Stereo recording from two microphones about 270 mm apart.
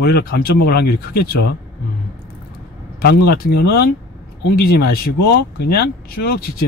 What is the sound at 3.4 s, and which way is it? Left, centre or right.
Speech, left.